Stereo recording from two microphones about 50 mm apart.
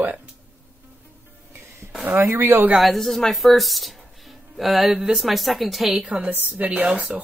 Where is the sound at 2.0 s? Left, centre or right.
Right.